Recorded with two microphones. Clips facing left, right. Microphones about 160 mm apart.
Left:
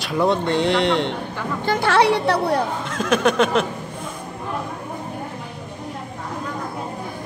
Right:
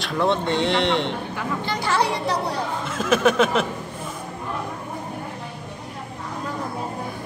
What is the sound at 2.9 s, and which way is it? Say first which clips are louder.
Speech: right 2 dB; 5° right (ahead or behind).